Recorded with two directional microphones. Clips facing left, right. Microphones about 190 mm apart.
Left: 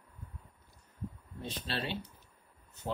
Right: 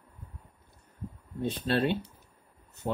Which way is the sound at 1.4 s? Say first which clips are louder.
Right 10 dB; 55° right (ahead or behind).